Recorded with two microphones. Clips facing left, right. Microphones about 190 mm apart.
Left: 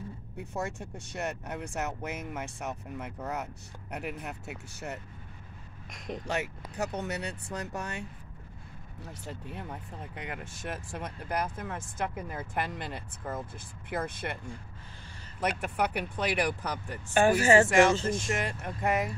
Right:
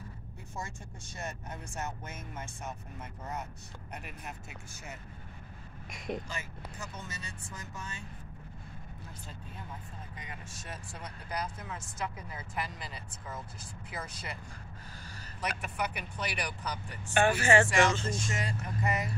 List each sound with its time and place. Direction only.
0.4 s speech: 65° left (ahead or behind)
5.9 s speech: 5° right (ahead or behind)
6.2 s speech: 70° left (ahead or behind)
9.0 s speech: 75° left (ahead or behind); by 14.3 s 55° left (ahead or behind)
15.4 s speech: 60° left (ahead or behind)
17.2 s speech: 40° left (ahead or behind)
18.2 s speech: 60° left (ahead or behind)